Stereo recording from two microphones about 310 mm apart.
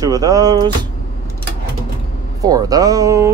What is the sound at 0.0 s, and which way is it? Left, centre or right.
Speech, centre.